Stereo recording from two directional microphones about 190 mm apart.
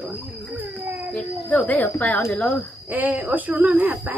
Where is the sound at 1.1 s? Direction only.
5° left (ahead or behind).